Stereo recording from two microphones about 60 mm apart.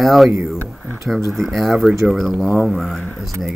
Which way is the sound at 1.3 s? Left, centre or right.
Centre.